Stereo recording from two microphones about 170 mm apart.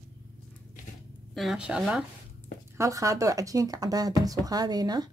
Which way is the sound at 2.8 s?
20° right (ahead or behind).